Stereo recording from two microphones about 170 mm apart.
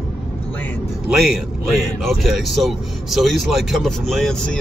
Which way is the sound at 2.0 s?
Centre (ahead or behind).